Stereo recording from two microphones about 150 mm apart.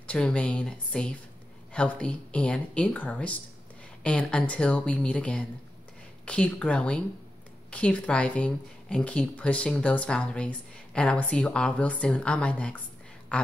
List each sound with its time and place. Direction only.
0.0 s speech: 10° left (ahead or behind)